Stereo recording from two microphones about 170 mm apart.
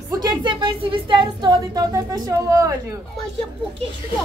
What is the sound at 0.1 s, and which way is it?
A woman's voice, 25° right (ahead or behind).